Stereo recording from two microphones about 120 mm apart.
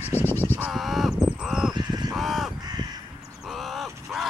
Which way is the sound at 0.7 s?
Centre (ahead or behind).